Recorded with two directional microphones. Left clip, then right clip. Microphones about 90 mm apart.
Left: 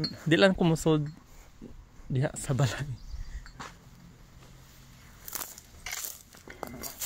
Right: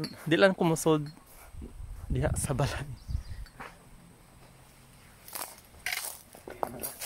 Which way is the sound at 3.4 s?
10° left (ahead or behind).